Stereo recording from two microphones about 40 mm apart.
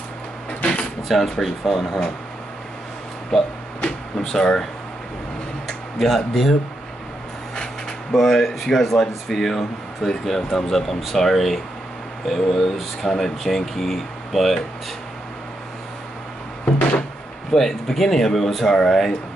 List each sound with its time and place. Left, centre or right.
1.0 s speech: centre
3.3 s a sound: centre
5.9 s speech: centre
8.1 s speech: centre
17.5 s speech: centre